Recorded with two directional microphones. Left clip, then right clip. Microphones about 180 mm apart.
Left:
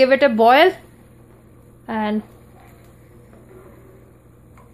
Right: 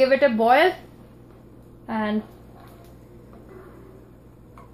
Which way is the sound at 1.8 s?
65° left (ahead or behind).